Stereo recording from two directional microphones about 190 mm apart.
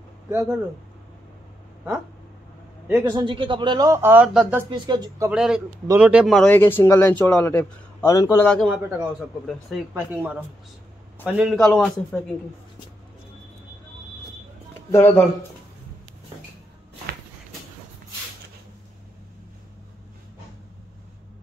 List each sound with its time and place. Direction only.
2.9 s a man's voice: 20° right (ahead or behind)
4.6 s speech: 25° right (ahead or behind)
5.3 s a man's voice: 5° right (ahead or behind)
14.9 s a man's voice: 10° left (ahead or behind)